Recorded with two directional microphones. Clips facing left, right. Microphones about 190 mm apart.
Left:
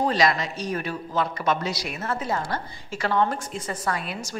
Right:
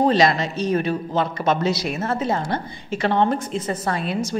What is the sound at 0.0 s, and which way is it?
A man's voice, 25° right (ahead or behind).